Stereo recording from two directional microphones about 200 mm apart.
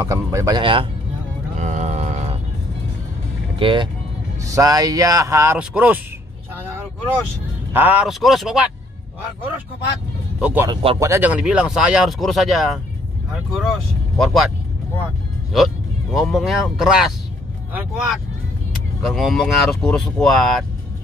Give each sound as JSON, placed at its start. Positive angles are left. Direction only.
{"t": 0.0, "sound": "speech", "side_deg": -15}
{"t": 1.6, "sound": "grunt", "side_deg": -35}
{"t": 3.5, "sound": "speech", "side_deg": -25}
{"t": 7.7, "sound": "speech", "side_deg": -10}
{"t": 10.4, "sound": "speech", "side_deg": -10}
{"t": 10.7, "sound": "speech", "side_deg": -30}
{"t": 11.0, "sound": "speech", "side_deg": -10}
{"t": 15.5, "sound": "speech", "side_deg": 0}